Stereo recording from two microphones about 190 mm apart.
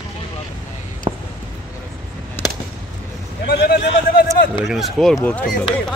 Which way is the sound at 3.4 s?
55° left (ahead or behind).